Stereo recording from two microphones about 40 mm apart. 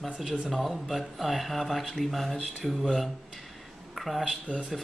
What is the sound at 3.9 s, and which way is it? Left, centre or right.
Speech, centre.